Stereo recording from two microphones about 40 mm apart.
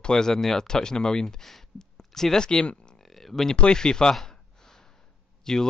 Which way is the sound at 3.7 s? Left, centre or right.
Centre.